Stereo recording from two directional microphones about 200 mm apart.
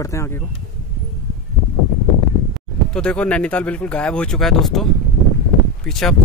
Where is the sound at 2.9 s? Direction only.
5° left (ahead or behind).